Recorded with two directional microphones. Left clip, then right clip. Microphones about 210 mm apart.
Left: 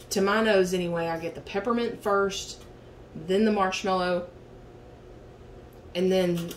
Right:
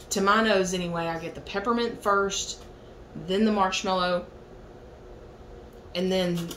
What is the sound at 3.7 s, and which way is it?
Speech, 40° left (ahead or behind).